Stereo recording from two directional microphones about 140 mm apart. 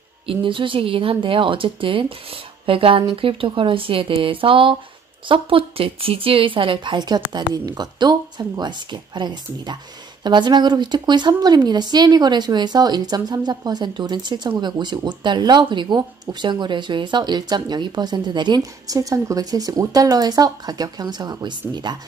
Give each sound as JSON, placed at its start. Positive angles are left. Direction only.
{"t": 0.3, "sound": "speech", "side_deg": -35}